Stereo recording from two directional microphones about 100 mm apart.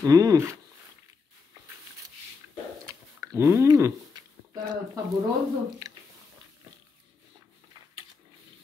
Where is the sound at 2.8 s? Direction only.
30° right (ahead or behind).